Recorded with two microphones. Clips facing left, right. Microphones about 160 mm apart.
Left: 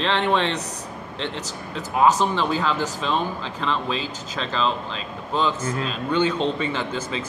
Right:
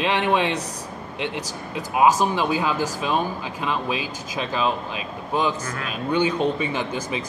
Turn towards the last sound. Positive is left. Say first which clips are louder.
# right 1 dB
turn(degrees=-15)  # may be behind; listen again after turning